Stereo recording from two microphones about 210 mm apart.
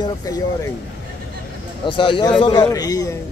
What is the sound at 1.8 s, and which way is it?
A man's voice, 25° left (ahead or behind).